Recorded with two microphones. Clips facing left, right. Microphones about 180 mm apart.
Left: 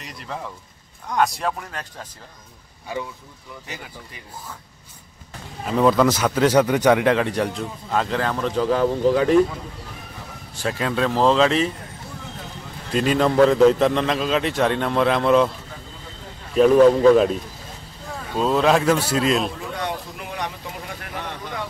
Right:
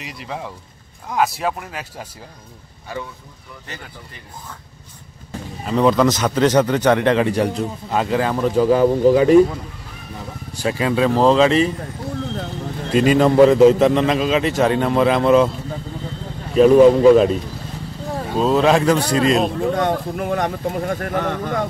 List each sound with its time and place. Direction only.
0.0 s a man's voice: 5° right (ahead or behind)
3.6 s speech: 10° left (ahead or behind)
5.7 s a man's voice: centre (ahead or behind)
10.5 s a man's voice: centre (ahead or behind)
12.9 s a man's voice: 5° right (ahead or behind)
16.7 s speech: 10° right (ahead or behind)
17.1 s a man's voice: centre (ahead or behind)
18.4 s a man's voice: centre (ahead or behind)
19.6 s speech: 50° right (ahead or behind)